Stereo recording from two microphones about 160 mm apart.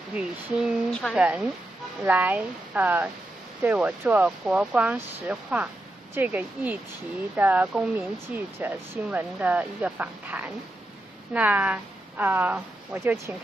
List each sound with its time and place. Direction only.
0.1 s speech: 5° right (ahead or behind)
1.2 s speech: 5° right (ahead or behind)